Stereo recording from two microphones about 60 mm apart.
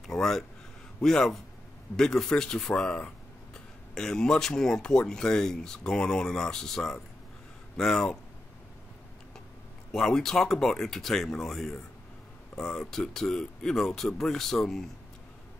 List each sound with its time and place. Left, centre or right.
0.0 s speech: centre
9.9 s speech: centre